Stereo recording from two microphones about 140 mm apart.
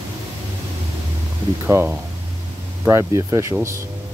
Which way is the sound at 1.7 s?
15° right (ahead or behind).